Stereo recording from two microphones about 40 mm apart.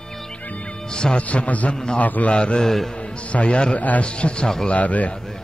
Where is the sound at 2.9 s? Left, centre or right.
Left.